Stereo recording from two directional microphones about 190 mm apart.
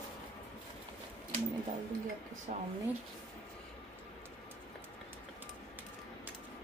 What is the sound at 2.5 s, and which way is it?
Speech, 40° right (ahead or behind).